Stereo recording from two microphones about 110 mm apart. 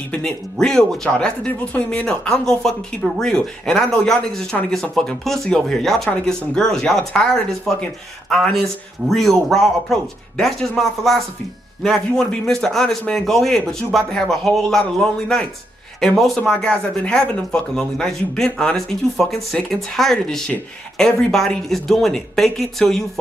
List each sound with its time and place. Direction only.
0.1 s speech: 5° left (ahead or behind)